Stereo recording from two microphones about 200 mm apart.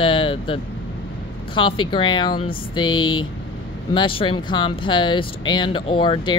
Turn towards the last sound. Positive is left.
turn(degrees=25)  # may be behind; listen again after turning